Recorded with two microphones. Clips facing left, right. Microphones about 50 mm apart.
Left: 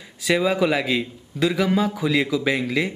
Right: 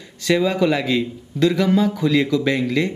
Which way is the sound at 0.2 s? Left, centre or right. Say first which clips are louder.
Right 2 dB; centre.